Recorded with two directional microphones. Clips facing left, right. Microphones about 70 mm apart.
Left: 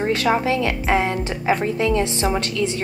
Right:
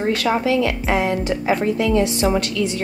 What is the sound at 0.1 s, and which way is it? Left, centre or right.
Speech, left.